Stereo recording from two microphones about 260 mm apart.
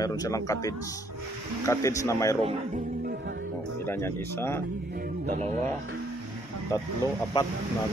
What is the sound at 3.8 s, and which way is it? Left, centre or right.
Speech, centre.